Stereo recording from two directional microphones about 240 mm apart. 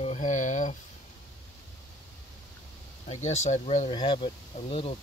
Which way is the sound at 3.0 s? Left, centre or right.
Left.